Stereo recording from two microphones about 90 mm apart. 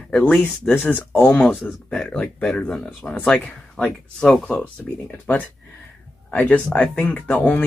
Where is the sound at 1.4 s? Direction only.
Centre (ahead or behind).